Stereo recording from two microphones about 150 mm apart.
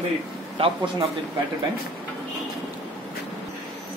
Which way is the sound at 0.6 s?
40° right (ahead or behind).